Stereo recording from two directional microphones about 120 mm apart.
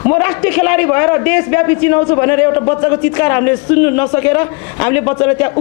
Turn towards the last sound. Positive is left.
turn(degrees=20)  # may be behind; listen again after turning